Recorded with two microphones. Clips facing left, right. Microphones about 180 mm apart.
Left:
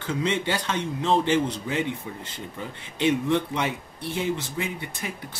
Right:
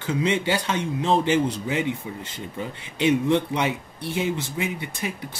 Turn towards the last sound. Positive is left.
turn(degrees=-15)  # may be behind; listen again after turning